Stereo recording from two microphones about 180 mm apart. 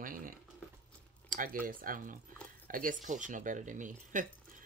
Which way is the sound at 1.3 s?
50° right (ahead or behind).